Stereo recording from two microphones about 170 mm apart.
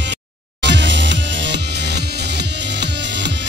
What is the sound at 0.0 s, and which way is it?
Music, 90° right.